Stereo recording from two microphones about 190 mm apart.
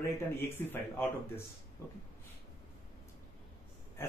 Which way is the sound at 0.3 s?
10° left (ahead or behind).